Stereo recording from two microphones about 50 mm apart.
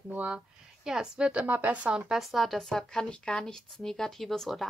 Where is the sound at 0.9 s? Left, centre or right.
Centre.